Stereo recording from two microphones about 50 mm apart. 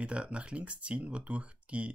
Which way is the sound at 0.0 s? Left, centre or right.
Right.